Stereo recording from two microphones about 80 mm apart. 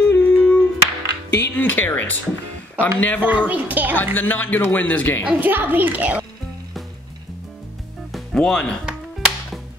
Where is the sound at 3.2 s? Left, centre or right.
Centre.